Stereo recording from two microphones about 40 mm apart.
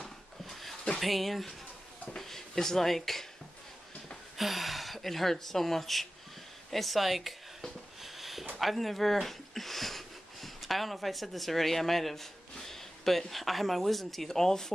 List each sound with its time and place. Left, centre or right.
0.0 s dog: centre
0.9 s speech: centre
4.4 s speech: centre
8.0 s a sound: centre
8.5 s speech: centre
12.5 s a sound: centre
13.3 s speech: centre